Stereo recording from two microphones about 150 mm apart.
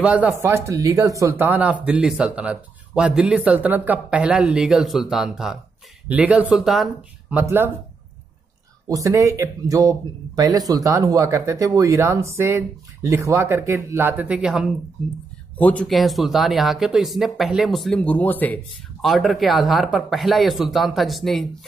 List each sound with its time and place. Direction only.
0.0 s speech: 10° right (ahead or behind)
7.3 s speech: 15° right (ahead or behind)
8.8 s speech: 20° right (ahead or behind); by 14.7 s 5° right (ahead or behind)
15.5 s speech: 10° left (ahead or behind)
18.9 s speech: centre (ahead or behind)